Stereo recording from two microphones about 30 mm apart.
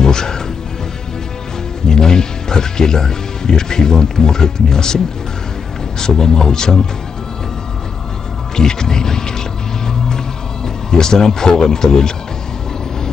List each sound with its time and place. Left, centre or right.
0.0 s music: left
1.9 s speech: left
8.5 s speech: left
10.0 s music: left